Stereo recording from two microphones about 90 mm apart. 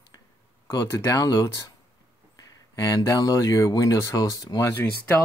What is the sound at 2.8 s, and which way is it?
Speech, 40° left (ahead or behind).